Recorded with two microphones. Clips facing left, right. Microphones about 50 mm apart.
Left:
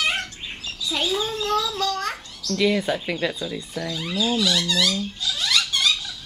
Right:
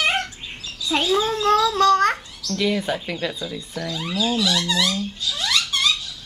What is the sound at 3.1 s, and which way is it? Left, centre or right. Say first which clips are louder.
Speech: left 1 dB; centre.